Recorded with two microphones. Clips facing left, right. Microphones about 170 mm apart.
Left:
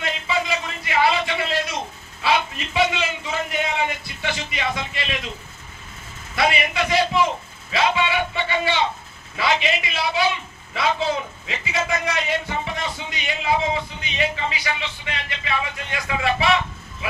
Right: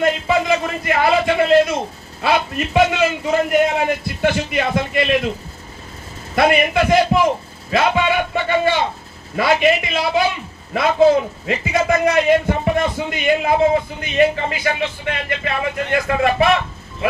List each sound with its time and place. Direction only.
0.0 s a man's voice: 50° right (ahead or behind)
6.3 s a man's voice: 50° right (ahead or behind)